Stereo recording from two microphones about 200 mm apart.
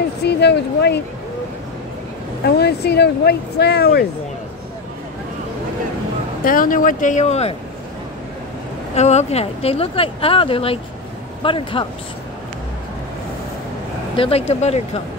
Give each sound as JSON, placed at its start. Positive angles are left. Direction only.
{"t": 0.2, "sound": "speech", "side_deg": 55}
{"t": 2.4, "sound": "speech", "side_deg": 55}
{"t": 6.4, "sound": "speech", "side_deg": 45}
{"t": 8.9, "sound": "speech", "side_deg": 35}
{"t": 14.1, "sound": "speech", "side_deg": 25}